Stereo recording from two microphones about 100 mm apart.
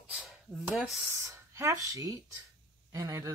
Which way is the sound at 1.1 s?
25° right (ahead or behind).